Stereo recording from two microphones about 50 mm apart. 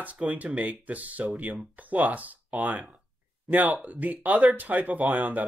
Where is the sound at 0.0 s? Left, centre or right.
Right.